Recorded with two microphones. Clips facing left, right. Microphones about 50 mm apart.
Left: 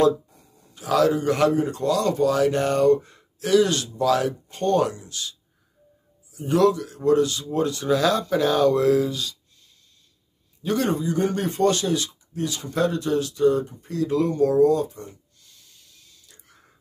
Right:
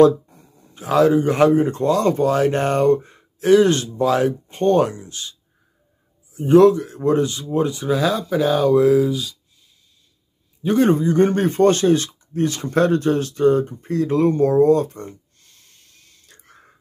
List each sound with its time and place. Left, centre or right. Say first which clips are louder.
0.0 s speech: right 6 dB; right
6.3 s speech: right 7 dB; right; by 9.4 s centre
10.6 s speech: right 7 dB; right
14.9 s a sound: right 5 dB; right